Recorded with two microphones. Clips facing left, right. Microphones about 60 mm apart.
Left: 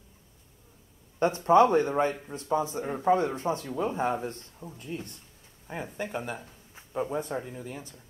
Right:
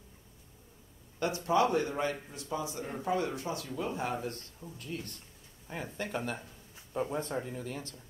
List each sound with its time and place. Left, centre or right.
1.2 s speech: left
5.9 s speech: centre